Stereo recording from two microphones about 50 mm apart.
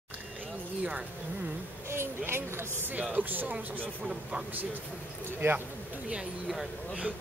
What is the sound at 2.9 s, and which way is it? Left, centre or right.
Speech, right.